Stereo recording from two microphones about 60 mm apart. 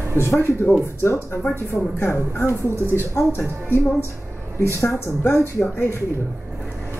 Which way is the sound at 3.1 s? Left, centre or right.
Left.